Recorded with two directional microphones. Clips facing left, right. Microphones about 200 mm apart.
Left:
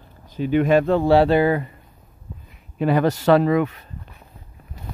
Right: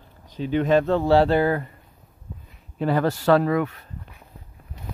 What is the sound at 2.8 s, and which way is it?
Speech, 15° left (ahead or behind).